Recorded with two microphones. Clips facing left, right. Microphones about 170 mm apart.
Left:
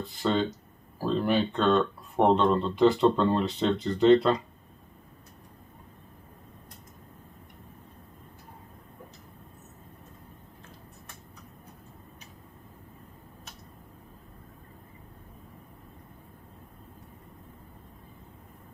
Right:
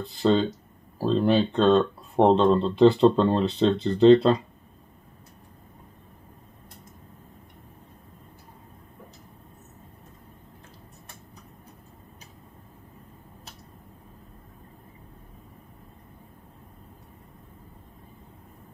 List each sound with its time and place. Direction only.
0.2 s speech: 30° right (ahead or behind)